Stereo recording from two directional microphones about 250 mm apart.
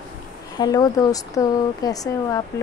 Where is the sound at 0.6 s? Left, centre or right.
Centre.